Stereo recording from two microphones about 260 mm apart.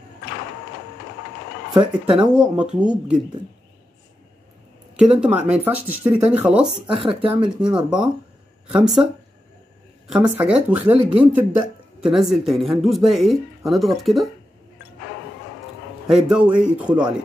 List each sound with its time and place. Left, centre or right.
1.7 s speech: centre
2.3 s speech: centre
5.1 s speech: centre
7.0 s speech: centre
7.7 s speech: centre
10.1 s speech: centre
10.4 s speech: centre
16.1 s speech: centre